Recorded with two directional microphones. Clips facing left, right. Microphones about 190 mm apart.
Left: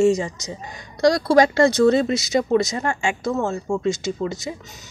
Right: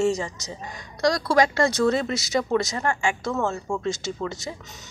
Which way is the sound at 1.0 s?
30° left (ahead or behind).